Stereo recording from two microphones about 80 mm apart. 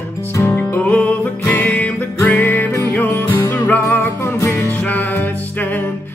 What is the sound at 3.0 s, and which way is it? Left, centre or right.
Music, left.